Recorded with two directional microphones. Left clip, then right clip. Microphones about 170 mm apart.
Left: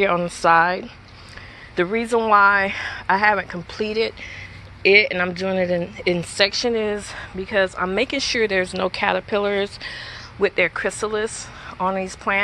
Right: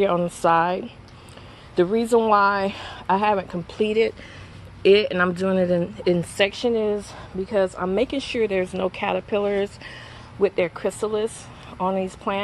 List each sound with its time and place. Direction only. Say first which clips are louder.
0.0 s a woman's voice: left 2 dB; 15° right (ahead or behind)
1.8 s speech: right 1 dB; centre (ahead or behind)
2.1 s speech: left 3 dB; 25° right (ahead or behind)
3.1 s speech: left 3 dB; 5° left (ahead or behind)
3.7 s speech: right 2 dB; 30° right (ahead or behind)
6.4 s a woman's voice: left 2 dB; 10° right (ahead or behind)